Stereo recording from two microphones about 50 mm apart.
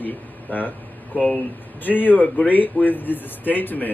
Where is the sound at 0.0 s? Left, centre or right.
Left.